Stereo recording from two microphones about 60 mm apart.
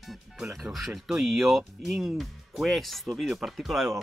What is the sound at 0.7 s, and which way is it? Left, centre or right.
Speech, centre.